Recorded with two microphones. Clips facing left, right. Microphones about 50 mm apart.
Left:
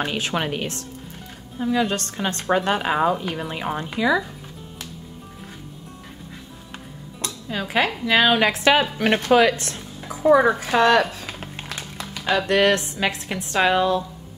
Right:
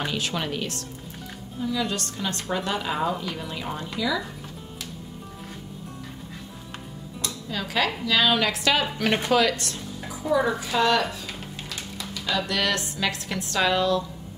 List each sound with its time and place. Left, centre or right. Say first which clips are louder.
0.0 s a woman's voice: left 4 dB; left
7.2 s music: left 3 dB; left
8.0 s a woman's voice: left 5 dB; left
9.3 s a sound: left 7 dB; left
10.3 s speech: left 5 dB; left